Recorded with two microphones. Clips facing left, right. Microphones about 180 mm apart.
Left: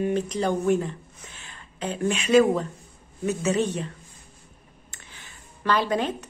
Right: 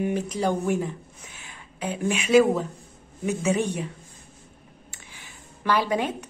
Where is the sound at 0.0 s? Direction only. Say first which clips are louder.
Left 1 dB; 10° right (ahead or behind).